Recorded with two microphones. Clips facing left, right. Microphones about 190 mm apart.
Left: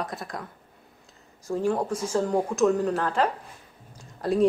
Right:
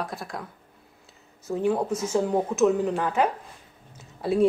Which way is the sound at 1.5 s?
5° right (ahead or behind).